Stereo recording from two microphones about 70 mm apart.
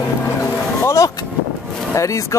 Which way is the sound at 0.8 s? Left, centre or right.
Left.